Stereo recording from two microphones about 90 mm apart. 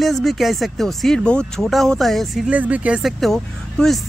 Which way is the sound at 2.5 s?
15° right (ahead or behind).